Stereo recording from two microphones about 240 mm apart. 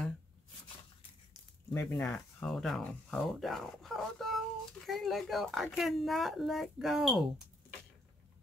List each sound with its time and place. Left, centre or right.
1.7 s speech: centre